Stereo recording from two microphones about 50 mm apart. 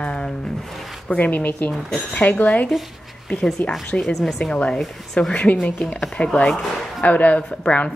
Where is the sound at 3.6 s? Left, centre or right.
Left.